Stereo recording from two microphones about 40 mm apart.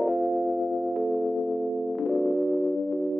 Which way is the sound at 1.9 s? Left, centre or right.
Centre.